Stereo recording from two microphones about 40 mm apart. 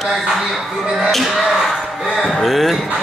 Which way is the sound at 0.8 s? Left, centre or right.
Centre.